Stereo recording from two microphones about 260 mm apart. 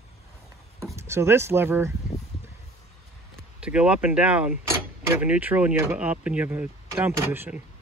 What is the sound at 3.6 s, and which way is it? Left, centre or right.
Speech, centre.